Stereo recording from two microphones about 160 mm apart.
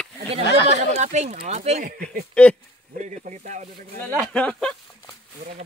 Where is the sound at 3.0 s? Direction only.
50° right (ahead or behind).